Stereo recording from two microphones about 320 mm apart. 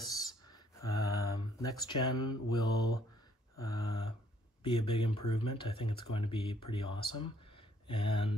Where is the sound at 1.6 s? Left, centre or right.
Centre.